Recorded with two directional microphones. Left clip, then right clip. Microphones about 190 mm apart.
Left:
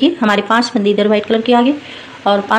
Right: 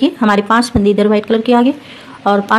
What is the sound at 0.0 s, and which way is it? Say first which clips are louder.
A woman's voice: even; 35° right (ahead or behind).